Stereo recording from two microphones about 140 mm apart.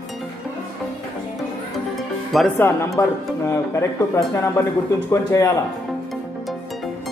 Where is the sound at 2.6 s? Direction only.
20° left (ahead or behind).